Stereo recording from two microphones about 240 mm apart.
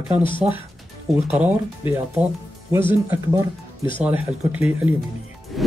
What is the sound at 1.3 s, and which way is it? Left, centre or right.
Speech, centre.